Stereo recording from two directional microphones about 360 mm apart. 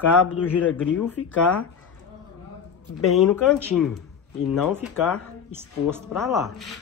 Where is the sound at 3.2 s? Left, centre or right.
Centre.